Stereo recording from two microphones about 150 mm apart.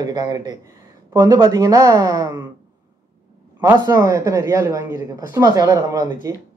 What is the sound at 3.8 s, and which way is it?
Speech, 25° right (ahead or behind).